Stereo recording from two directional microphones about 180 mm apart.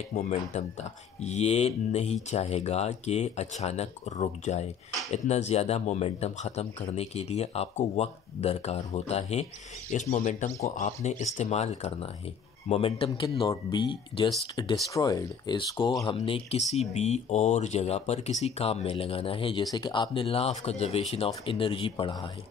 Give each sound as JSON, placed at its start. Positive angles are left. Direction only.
{"t": 0.1, "sound": "speech", "side_deg": 40}